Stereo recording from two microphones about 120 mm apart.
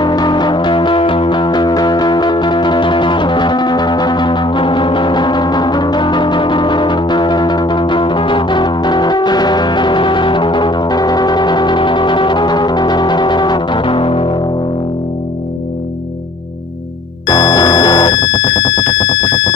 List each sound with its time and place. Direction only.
0.0 s music: 35° left (ahead or behind)
17.3 s music: 35° left (ahead or behind)